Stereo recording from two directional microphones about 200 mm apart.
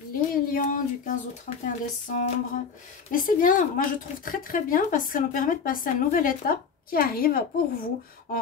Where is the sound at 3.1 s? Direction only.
40° left (ahead or behind).